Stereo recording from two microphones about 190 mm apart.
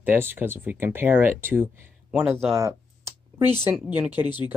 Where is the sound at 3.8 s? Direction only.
10° right (ahead or behind).